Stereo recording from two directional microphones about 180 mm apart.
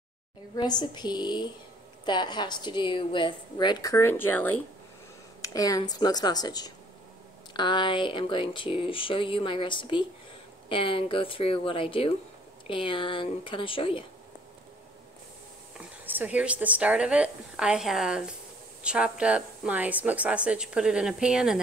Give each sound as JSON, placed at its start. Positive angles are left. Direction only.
{"t": 0.6, "sound": "a woman's voice", "side_deg": 25}
{"t": 16.1, "sound": "a woman's voice", "side_deg": -10}